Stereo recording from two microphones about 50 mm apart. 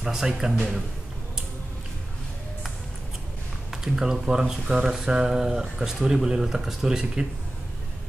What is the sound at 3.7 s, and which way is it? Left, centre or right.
Speech, centre.